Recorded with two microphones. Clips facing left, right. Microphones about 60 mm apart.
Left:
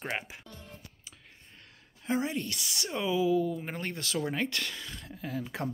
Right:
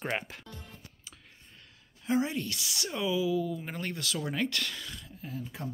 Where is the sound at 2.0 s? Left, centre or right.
Left.